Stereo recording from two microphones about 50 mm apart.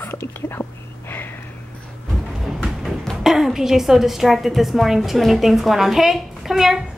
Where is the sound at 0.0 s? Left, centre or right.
Left.